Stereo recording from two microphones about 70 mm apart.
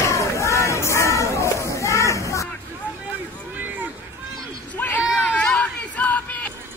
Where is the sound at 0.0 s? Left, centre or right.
Left.